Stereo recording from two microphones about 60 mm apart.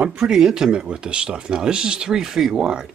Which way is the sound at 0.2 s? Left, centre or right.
Centre.